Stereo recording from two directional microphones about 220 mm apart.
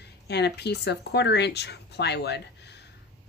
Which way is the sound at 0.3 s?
50° left (ahead or behind).